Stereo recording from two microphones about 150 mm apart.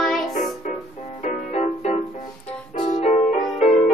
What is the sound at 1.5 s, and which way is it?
Music, 45° left (ahead or behind).